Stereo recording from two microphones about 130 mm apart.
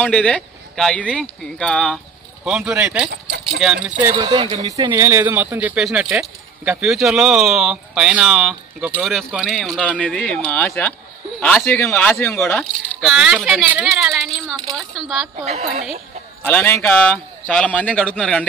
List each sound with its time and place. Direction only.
0.0 s speech: 10° left (ahead or behind)
2.4 s speech: 5° right (ahead or behind)
4.1 s speech: 35° right (ahead or behind); by 12.3 s 15° left (ahead or behind)
12.5 s speech: centre (ahead or behind)
15.4 s a woman's voice: 55° right (ahead or behind)
16.4 s speech: 15° left (ahead or behind)